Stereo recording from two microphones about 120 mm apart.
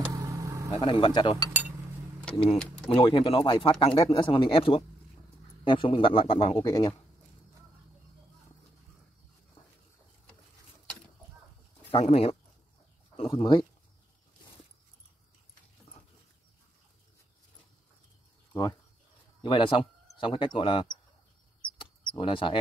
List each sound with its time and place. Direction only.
0.1 s vehicle: 30° right (ahead or behind)
0.7 s speech: 50° left (ahead or behind)
12.0 s speech: 60° left (ahead or behind)
18.5 s speech: 30° left (ahead or behind)
19.4 s speech: 45° left (ahead or behind)
21.7 s a sound: 45° left (ahead or behind)